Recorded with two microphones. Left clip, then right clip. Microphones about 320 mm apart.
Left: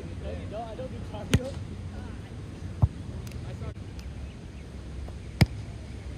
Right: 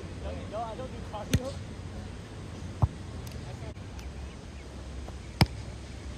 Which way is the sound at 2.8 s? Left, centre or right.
Right.